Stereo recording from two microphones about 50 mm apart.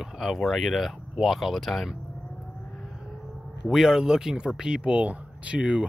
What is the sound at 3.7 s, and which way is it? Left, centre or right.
Speech, centre.